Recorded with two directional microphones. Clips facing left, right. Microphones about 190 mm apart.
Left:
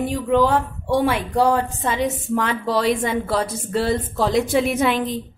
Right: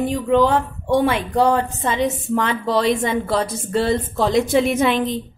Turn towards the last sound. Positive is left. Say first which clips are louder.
# right 2 dB
turn(degrees=5)  # may be behind; listen again after turning